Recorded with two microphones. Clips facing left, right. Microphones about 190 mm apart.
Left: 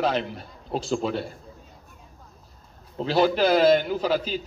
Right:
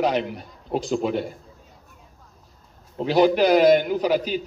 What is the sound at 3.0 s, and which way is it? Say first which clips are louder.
A man's voice: right 3 dB; 15° right (ahead or behind).